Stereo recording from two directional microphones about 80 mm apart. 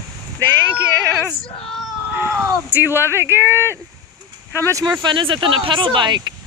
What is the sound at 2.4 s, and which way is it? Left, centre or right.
Speech, right.